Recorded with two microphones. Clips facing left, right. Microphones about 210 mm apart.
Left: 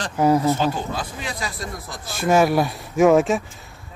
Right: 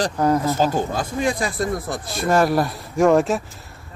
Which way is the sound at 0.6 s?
45° right (ahead or behind).